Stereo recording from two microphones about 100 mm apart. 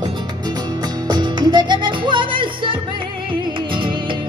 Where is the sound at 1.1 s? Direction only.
45° right (ahead or behind).